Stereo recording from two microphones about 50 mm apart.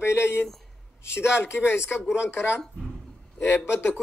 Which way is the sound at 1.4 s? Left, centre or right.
Left.